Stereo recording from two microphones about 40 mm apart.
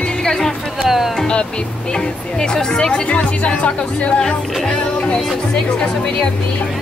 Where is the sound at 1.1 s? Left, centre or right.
Left.